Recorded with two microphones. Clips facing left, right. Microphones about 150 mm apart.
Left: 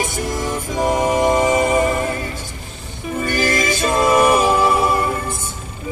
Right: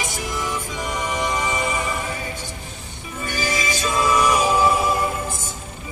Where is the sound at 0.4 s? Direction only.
45° left (ahead or behind).